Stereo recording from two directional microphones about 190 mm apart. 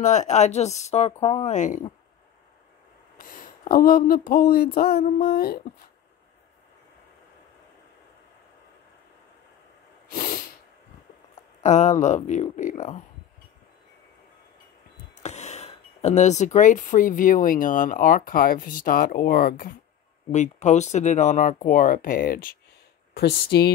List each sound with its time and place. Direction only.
0.0 s speech: 40° left (ahead or behind)
3.2 s speech: 50° left (ahead or behind)
10.1 s sneeze: 50° left (ahead or behind)
11.6 s speech: 40° left (ahead or behind)
15.2 s speech: 35° left (ahead or behind)
20.2 s speech: 35° left (ahead or behind); by 23.7 s 55° left (ahead or behind)